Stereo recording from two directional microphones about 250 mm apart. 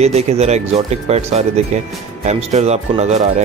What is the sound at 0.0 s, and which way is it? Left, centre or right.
Speech, right.